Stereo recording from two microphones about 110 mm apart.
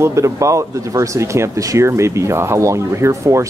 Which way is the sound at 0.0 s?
25° right (ahead or behind).